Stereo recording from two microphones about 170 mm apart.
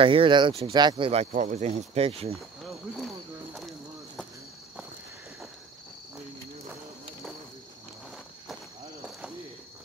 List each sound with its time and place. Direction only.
0.0 s speech: 30° right (ahead or behind)